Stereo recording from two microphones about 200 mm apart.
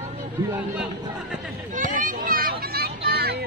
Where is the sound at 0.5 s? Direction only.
5° right (ahead or behind).